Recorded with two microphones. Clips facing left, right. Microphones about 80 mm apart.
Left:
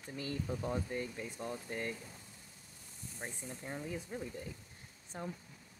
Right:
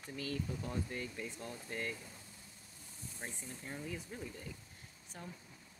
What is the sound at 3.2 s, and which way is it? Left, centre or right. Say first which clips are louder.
Speech: left 3 dB; centre.